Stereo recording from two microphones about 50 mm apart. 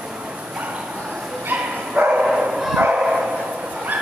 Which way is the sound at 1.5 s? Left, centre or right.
Right.